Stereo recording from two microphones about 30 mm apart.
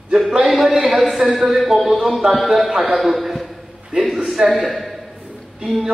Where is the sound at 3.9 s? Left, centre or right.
Right.